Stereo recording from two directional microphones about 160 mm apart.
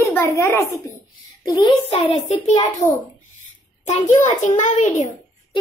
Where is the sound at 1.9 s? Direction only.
40° left (ahead or behind).